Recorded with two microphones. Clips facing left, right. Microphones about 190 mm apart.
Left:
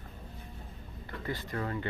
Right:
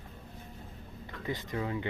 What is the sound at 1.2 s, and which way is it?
Speech, 15° right (ahead or behind).